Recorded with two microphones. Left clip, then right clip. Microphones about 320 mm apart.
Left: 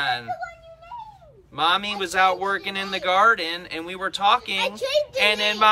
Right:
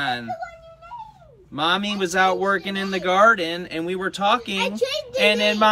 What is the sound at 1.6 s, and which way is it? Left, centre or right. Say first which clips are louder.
Speech: even; centre.